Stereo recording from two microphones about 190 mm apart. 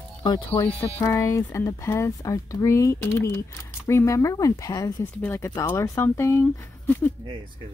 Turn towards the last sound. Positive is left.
turn(degrees=10)  # may be behind; listen again after turning